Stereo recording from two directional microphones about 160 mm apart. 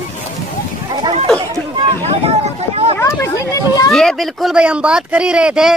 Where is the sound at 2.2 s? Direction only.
40° right (ahead or behind).